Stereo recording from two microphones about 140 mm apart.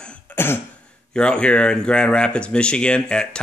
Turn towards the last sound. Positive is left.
turn(degrees=5)  # may be behind; listen again after turning